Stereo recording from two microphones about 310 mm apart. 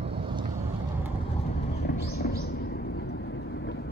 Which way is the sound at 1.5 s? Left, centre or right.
Left.